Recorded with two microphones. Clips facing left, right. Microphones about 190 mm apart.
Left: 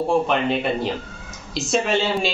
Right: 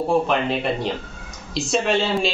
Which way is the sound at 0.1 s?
Centre (ahead or behind).